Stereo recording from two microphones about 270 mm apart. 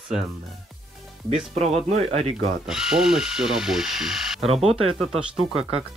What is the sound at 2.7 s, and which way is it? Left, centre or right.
Speech, centre.